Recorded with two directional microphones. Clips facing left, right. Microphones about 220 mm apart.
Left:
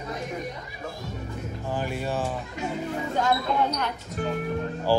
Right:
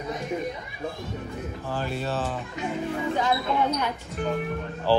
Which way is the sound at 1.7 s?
15° left (ahead or behind).